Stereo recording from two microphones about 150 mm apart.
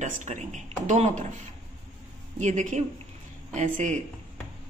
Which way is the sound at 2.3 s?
50° right (ahead or behind).